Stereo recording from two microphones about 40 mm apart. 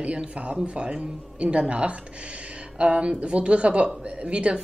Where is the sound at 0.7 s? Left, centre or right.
Right.